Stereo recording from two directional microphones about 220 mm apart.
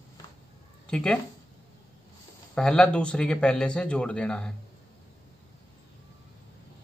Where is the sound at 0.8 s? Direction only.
5° left (ahead or behind).